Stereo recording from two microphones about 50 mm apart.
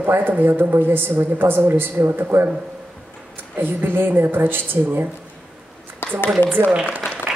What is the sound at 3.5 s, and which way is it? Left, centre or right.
A woman's voice, right.